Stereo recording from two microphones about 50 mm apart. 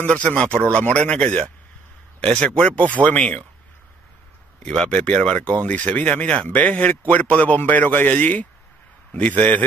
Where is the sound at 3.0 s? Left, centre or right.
Right.